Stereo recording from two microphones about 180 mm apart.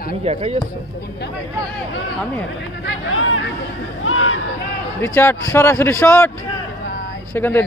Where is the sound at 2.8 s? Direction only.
85° left.